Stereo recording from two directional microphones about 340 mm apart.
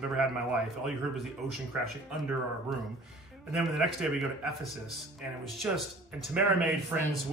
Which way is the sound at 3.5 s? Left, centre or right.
Centre.